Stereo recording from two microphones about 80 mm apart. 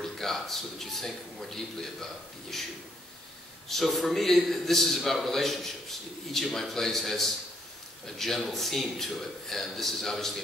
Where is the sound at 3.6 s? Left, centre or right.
Centre.